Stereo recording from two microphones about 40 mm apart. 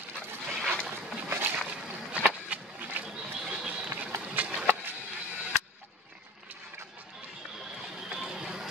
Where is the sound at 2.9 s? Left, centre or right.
Right.